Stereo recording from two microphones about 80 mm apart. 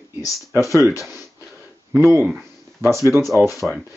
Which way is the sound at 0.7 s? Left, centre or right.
Right.